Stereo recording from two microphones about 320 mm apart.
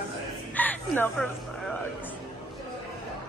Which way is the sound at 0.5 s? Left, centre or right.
Centre.